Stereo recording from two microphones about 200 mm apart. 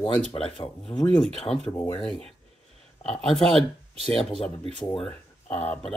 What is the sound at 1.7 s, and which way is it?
Speech, 15° left (ahead or behind).